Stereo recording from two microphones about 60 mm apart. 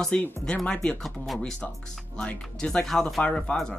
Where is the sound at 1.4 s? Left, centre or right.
Centre.